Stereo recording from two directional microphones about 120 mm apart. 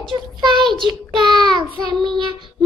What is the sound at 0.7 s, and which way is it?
Child singing, 40° right (ahead or behind).